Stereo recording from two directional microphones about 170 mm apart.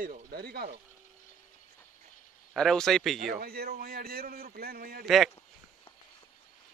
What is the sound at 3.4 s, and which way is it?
A man's voice, 65° right (ahead or behind).